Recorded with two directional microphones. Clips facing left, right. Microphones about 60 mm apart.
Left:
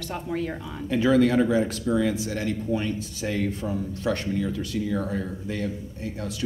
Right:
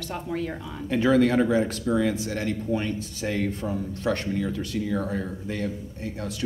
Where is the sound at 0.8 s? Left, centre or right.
Right.